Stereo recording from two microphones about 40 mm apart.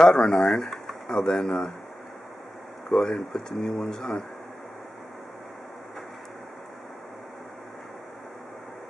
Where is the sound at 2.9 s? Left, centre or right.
Centre.